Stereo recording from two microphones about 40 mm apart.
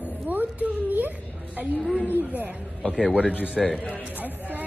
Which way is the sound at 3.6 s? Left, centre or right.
Centre.